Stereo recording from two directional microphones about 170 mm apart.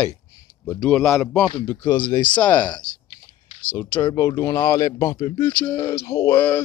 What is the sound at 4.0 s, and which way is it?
Speech, 20° left (ahead or behind).